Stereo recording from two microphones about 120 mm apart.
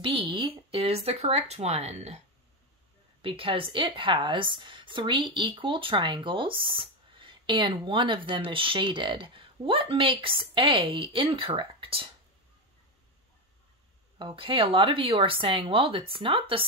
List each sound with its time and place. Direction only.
0.0 s speech: 45° right (ahead or behind); by 2.1 s 60° right (ahead or behind)
3.2 s a woman's voice: 50° right (ahead or behind)
14.1 s a woman's voice: 45° right (ahead or behind)